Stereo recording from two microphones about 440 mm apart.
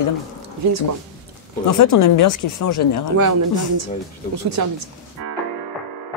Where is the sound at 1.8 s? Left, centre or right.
Left.